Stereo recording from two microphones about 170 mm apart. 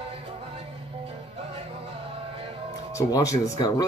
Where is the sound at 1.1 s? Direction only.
35° right (ahead or behind).